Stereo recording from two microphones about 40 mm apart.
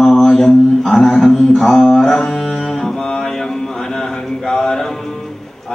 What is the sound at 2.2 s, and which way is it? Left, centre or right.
Mantra, centre.